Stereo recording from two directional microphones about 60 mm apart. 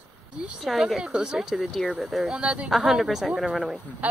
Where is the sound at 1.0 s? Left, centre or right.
Centre.